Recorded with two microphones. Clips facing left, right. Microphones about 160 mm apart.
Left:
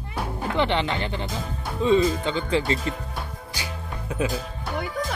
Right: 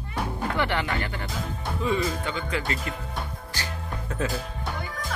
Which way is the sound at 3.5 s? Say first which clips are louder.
Even; 10° left (ahead or behind).